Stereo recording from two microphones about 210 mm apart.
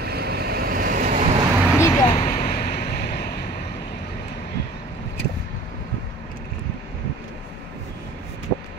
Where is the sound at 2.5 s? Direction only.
45° left (ahead or behind).